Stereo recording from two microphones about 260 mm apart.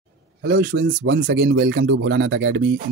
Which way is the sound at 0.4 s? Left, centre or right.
Right.